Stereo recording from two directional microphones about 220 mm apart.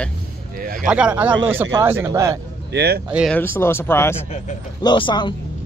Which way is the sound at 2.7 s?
45° right (ahead or behind).